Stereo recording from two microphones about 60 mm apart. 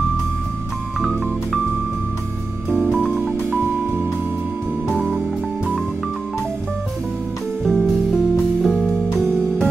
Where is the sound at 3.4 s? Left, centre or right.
Right.